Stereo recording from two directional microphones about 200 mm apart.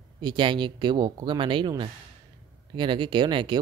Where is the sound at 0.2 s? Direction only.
20° right (ahead or behind).